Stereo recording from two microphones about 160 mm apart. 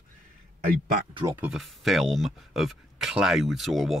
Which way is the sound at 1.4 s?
Centre (ahead or behind).